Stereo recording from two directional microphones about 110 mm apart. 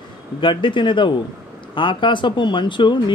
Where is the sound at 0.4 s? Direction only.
50° left (ahead or behind).